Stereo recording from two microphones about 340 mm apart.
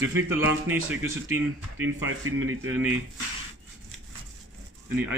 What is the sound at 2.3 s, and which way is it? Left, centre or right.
Speech, right.